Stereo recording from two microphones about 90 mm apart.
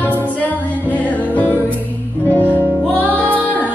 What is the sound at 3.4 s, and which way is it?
Music, 20° left (ahead or behind).